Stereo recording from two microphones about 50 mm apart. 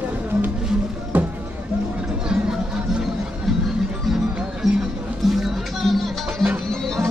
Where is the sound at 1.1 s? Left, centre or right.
Right.